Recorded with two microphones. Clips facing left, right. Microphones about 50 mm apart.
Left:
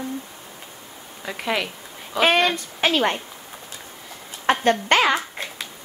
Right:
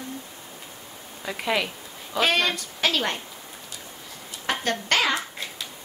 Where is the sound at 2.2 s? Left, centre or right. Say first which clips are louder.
Left 4 dB; left.